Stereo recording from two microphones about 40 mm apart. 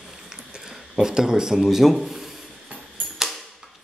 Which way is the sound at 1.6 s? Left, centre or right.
Centre.